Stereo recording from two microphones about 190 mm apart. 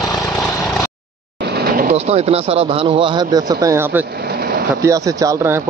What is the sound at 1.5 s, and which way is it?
Vehicle, 50° right (ahead or behind).